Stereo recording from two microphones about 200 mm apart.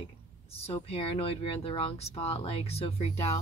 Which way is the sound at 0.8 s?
30° left (ahead or behind).